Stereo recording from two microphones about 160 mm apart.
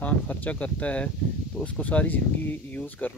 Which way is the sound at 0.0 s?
10° left (ahead or behind).